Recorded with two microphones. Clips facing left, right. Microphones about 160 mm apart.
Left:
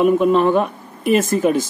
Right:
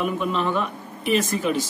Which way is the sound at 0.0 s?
50° left (ahead or behind).